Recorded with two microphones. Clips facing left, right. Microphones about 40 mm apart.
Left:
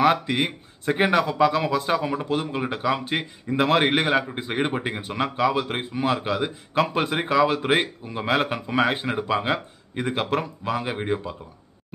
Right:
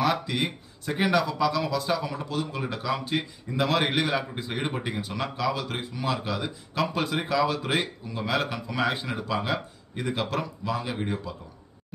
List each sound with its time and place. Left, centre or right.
0.0 s a man's voice: left